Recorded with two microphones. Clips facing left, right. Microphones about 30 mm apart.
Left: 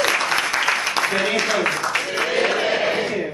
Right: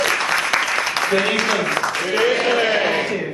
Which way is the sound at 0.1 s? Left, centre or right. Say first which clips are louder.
Right 1 dB; centre.